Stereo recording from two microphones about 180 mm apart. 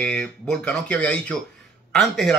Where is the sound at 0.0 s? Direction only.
5° left (ahead or behind).